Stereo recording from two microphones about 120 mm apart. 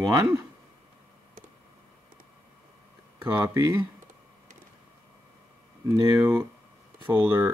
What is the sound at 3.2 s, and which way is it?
Speech, 25° right (ahead or behind).